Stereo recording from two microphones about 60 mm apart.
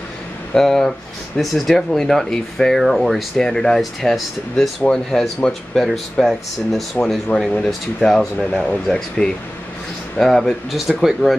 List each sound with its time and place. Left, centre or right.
0.6 s speech: centre
7.3 s speech: left
7.6 s speech: centre
8.4 s speech: centre